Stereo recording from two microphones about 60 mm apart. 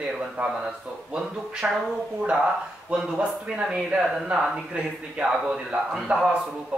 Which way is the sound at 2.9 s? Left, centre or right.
Centre.